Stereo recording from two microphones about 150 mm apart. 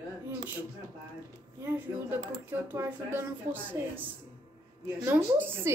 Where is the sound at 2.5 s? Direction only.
15° right (ahead or behind).